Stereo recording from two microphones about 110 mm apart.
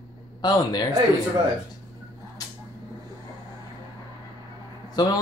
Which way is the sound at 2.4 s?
35° left (ahead or behind).